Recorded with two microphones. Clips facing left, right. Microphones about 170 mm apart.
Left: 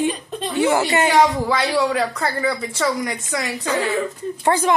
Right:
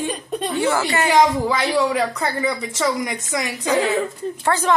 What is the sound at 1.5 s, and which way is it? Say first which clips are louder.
Speech: even; 20° right (ahead or behind).